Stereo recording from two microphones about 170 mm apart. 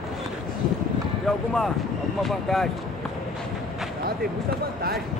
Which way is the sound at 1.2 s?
Centre (ahead or behind).